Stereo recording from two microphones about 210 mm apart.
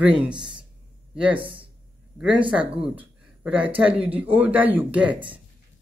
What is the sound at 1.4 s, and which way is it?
Speech, 25° right (ahead or behind).